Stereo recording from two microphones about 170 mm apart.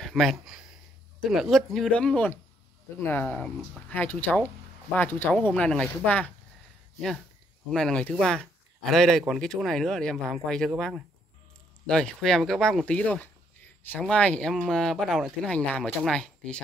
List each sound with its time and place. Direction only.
0.0 s speech: centre (ahead or behind)
7.7 s speech: 5° left (ahead or behind)